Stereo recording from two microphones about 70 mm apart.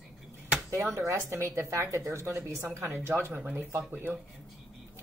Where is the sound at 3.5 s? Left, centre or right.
Right.